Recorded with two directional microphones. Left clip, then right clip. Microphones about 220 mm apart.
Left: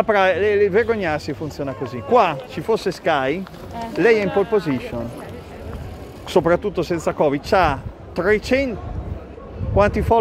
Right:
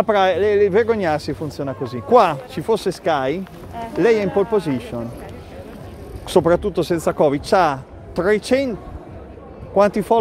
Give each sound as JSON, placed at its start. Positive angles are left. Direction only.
{"t": 0.0, "sound": "speech", "side_deg": -15}
{"t": 2.7, "sound": "speech", "side_deg": -15}
{"t": 3.7, "sound": "speech", "side_deg": 35}
{"t": 4.0, "sound": "speech", "side_deg": -15}
{"t": 6.2, "sound": "speech", "side_deg": -20}
{"t": 9.8, "sound": "speech", "side_deg": -15}